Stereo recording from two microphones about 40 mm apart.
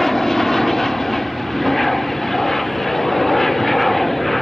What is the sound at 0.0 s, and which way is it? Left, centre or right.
Vehicle, centre.